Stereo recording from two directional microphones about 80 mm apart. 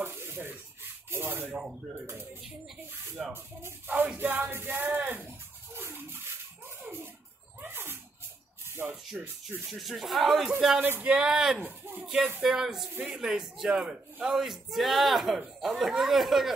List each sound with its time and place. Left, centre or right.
0.0 s a sound: right
1.1 s music: right
1.5 s speech: centre
3.2 s a man's voice: centre
3.6 s music: right
6.8 s a sound: right
7.6 s music: right
8.8 s a man's voice: centre
10.8 s speech: right
11.6 s music: right
12.4 s a man's voice: centre